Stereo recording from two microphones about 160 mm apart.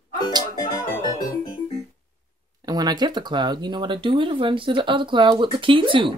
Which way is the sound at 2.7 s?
25° right (ahead or behind).